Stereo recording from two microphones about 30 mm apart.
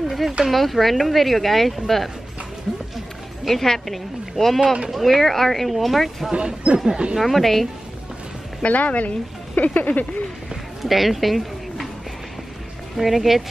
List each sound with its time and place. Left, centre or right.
0.5 s speech: centre
3.4 s a woman's voice: centre
5.7 s speech: centre
6.3 s speech: right
7.2 s speech: centre
8.6 s a woman's voice: left
10.8 s a sound: centre
12.9 s speech: centre